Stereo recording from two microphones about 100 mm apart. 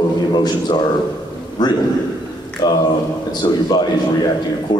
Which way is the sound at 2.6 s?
40° left (ahead or behind).